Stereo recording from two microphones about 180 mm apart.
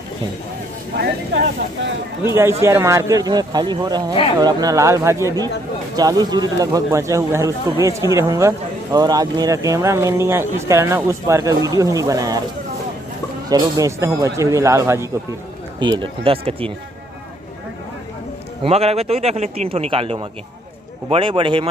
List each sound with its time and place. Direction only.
0.9 s speech: 75° right (ahead or behind)
2.2 s speech: 15° right (ahead or behind)
13.5 s speech: 20° right (ahead or behind)
15.8 s a man's voice: 25° right (ahead or behind)
18.6 s a man's voice: 35° right (ahead or behind)